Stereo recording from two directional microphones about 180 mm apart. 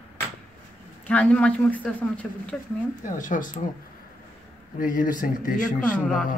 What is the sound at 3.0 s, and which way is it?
Speech, 45° left (ahead or behind).